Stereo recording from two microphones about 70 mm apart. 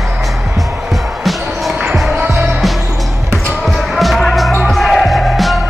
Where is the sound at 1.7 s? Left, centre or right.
Centre.